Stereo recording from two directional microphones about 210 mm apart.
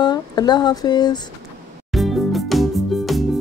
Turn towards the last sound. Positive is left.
turn(degrees=0)  # may be behind; listen again after turning